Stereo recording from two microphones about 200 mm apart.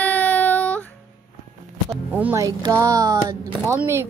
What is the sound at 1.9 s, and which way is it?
Speech, 5° right (ahead or behind).